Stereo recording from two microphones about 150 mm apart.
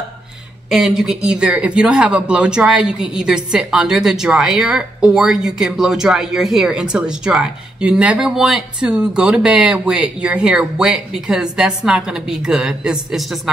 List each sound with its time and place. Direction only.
0.7 s speech: 5° right (ahead or behind)